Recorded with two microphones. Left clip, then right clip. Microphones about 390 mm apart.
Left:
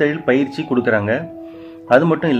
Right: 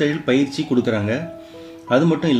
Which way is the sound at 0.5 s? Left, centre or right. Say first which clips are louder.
Left 3 dB; centre.